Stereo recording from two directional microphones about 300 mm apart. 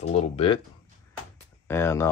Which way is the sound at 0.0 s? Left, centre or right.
Left.